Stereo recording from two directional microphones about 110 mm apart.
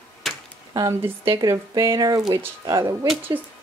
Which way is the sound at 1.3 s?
30° right (ahead or behind).